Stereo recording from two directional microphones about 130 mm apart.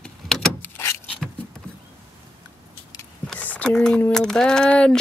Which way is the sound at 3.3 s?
10° left (ahead or behind).